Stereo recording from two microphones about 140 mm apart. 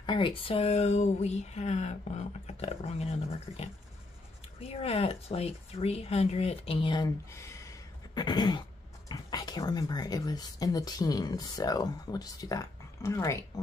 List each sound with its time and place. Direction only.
0.0 s speech: 35° left (ahead or behind)
7.3 s a sound: 20° left (ahead or behind)
9.1 s speech: 30° left (ahead or behind)